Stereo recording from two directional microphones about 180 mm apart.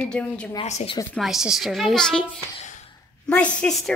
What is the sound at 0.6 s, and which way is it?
Speech, 35° left (ahead or behind).